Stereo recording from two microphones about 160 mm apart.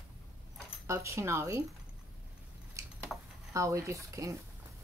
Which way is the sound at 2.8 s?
20° right (ahead or behind).